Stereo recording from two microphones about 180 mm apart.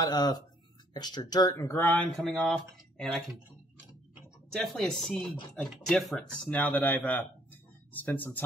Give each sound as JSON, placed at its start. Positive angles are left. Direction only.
{"t": 0.0, "sound": "speech", "side_deg": 20}
{"t": 4.6, "sound": "speech", "side_deg": 5}